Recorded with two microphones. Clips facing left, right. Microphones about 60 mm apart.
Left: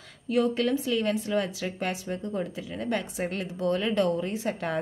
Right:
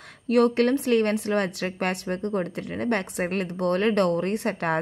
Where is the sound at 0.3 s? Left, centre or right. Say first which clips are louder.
Right 5 dB; right.